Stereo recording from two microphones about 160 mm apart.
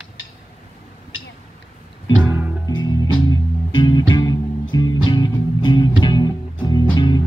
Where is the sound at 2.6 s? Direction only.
25° left (ahead or behind).